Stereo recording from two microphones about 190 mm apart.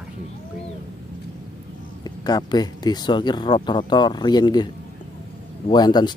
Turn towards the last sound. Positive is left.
turn(degrees=20)  # may be behind; listen again after turning